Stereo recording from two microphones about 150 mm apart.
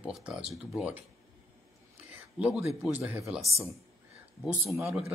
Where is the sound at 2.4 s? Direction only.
10° right (ahead or behind).